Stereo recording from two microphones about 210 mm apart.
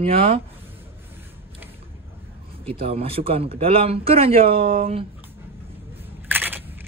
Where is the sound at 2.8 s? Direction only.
25° right (ahead or behind).